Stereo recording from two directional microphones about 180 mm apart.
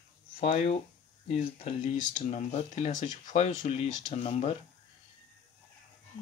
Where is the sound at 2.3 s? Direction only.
40° left (ahead or behind).